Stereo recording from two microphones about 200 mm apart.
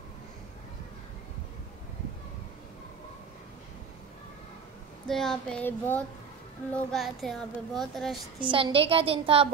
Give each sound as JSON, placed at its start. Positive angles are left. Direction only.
{"t": 5.0, "sound": "child singing", "side_deg": 0}
{"t": 8.4, "sound": "a woman's voice", "side_deg": -25}